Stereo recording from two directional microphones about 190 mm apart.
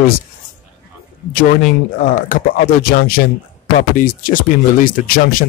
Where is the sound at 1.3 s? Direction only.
45° left (ahead or behind).